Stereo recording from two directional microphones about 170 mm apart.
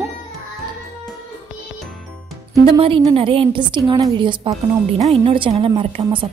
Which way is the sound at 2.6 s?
30° right (ahead or behind).